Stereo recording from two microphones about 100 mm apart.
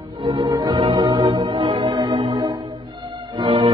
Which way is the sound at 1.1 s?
45° right (ahead or behind).